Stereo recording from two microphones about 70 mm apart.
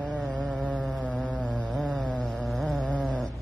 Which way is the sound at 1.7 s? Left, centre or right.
Centre.